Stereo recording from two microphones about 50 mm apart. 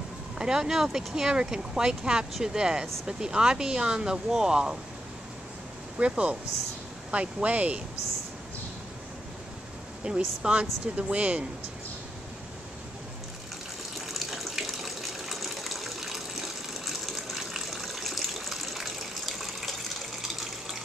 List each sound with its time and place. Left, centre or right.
0.4 s speech: centre
5.9 s speech: right
10.0 s speech: centre
13.9 s water: centre